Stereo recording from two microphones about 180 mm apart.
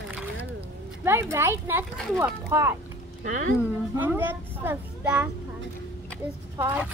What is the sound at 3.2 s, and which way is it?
Speech, 45° right (ahead or behind).